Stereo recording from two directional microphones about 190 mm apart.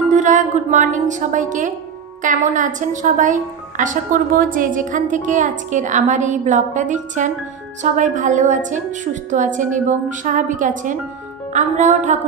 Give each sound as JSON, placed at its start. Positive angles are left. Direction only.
{"t": 0.1, "sound": "a woman's voice", "side_deg": -40}